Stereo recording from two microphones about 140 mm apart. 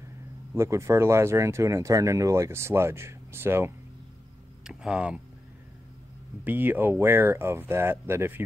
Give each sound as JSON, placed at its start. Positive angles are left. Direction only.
{"t": 0.6, "sound": "speech", "side_deg": -20}
{"t": 4.6, "sound": "speech", "side_deg": -5}
{"t": 6.4, "sound": "speech", "side_deg": -15}